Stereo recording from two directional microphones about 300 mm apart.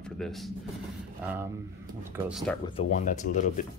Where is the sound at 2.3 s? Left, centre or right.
Centre.